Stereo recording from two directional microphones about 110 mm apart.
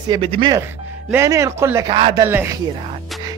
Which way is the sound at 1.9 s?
55° right (ahead or behind).